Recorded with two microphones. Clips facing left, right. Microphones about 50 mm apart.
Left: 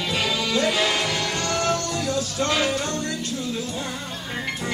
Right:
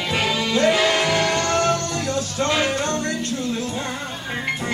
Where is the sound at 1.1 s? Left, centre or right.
Right.